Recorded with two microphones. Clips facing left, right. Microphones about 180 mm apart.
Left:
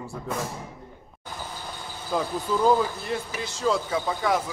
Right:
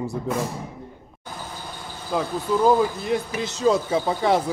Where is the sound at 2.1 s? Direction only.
5° right (ahead or behind).